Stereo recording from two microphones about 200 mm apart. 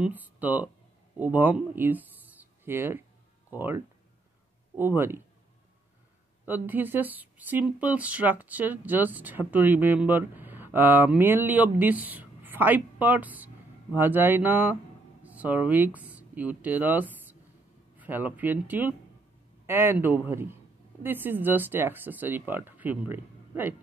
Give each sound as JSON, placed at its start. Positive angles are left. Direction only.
{"t": 0.0, "sound": "speech", "side_deg": -10}
{"t": 6.4, "sound": "speech", "side_deg": -10}